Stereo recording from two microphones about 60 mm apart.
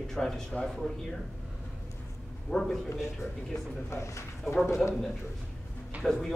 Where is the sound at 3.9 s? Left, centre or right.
Left.